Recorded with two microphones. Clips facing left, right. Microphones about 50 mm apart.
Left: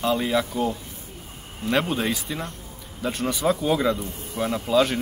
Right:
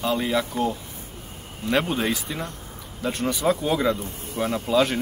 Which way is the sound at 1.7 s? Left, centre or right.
Centre.